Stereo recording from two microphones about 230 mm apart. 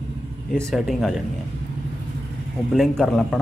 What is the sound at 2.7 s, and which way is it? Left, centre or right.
Speech, centre.